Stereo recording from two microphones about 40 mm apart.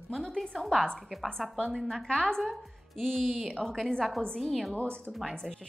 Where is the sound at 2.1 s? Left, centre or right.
Centre.